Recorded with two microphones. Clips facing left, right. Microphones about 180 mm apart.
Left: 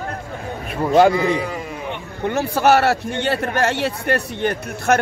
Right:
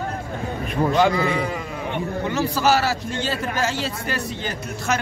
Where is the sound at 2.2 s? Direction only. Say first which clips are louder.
Left 5 dB; 55° left (ahead or behind).